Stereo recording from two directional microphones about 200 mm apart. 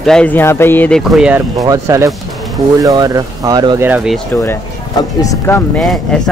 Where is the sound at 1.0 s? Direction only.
5° right (ahead or behind).